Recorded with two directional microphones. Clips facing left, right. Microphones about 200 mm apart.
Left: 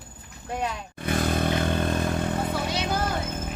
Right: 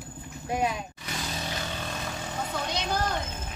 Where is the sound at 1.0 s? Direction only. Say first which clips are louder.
Left 11 dB; 55° left (ahead or behind).